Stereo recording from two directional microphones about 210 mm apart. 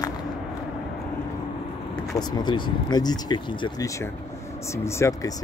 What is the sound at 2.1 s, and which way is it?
Speech, 20° left (ahead or behind).